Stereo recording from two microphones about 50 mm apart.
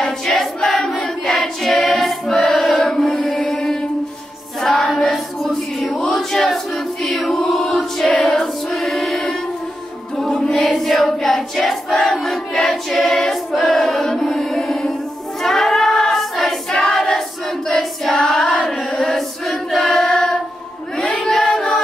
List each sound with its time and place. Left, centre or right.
0.0 s choir: centre
2.6 s music: centre
4.6 s choir: centre
10.5 s choir: centre
18.2 s a sound: centre
18.8 s choir: centre
21.2 s a sound: centre